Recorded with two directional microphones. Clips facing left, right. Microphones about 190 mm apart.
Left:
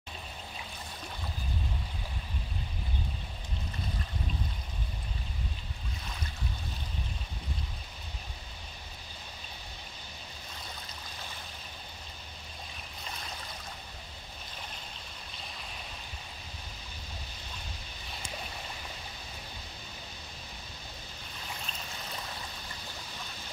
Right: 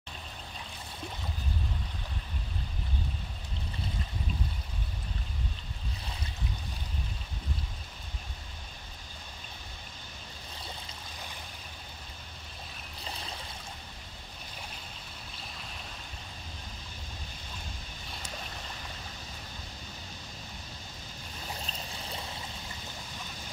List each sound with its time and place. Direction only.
21.5 s stream: 35° right (ahead or behind)